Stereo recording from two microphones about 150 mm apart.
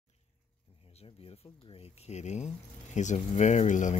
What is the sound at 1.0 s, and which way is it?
Speech, 35° left (ahead or behind).